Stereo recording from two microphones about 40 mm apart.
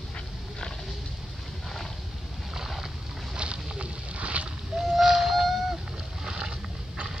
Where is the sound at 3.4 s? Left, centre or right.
Right.